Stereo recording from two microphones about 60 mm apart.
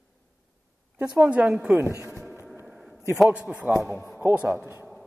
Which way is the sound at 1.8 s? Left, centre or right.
Right.